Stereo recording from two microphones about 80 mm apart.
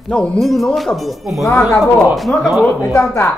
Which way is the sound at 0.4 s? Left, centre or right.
Centre.